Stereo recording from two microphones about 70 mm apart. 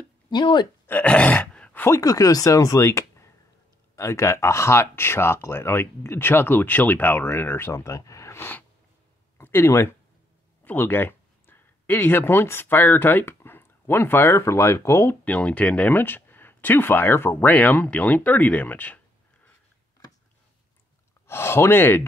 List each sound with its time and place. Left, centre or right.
0.3 s speech: left
0.8 s groan: left
1.9 s speech: left
10.6 s speech: left
15.2 s speech: centre
21.3 s speech: left